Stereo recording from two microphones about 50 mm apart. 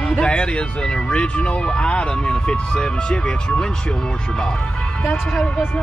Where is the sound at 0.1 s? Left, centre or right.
Left.